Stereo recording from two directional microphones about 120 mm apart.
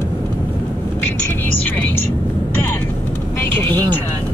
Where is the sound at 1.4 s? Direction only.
15° left (ahead or behind).